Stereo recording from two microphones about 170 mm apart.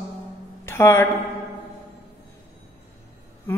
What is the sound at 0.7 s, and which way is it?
Speech, 15° left (ahead or behind).